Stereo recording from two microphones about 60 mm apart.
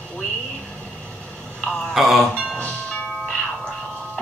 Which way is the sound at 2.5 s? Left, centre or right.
Left.